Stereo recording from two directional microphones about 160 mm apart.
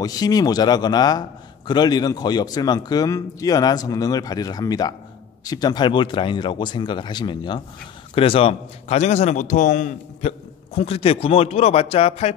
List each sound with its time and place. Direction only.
0.0 s a man's voice: 25° left (ahead or behind); by 10.3 s 50° left (ahead or behind)
10.7 s speech: 35° left (ahead or behind)